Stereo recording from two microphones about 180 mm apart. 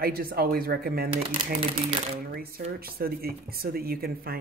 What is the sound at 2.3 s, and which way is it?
Speech, 55° right (ahead or behind).